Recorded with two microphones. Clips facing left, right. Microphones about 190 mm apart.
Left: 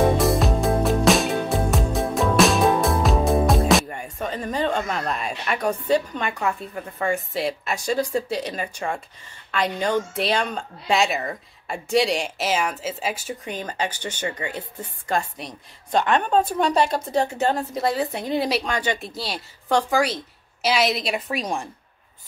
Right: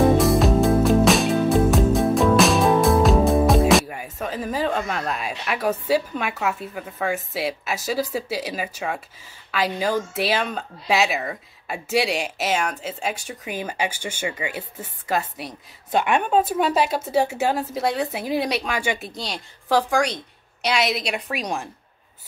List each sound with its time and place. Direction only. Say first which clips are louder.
0.2 s music: right 3 dB; centre (ahead or behind)
13.5 s a woman's voice: right 2 dB; 10° right (ahead or behind)